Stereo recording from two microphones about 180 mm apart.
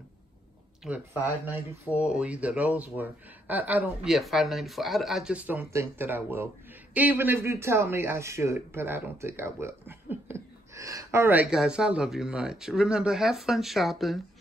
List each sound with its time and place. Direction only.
0.8 s speech: 10° right (ahead or behind)